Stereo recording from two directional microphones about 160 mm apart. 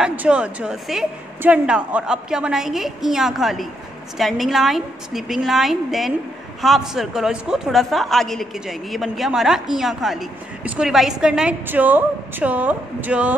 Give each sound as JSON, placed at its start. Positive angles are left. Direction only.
{"t": 0.0, "sound": "a woman's voice", "side_deg": -10}